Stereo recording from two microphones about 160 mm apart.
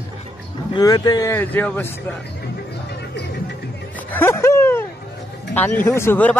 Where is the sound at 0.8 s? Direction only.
25° left (ahead or behind).